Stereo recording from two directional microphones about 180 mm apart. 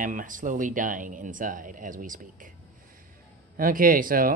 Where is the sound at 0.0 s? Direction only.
45° right (ahead or behind).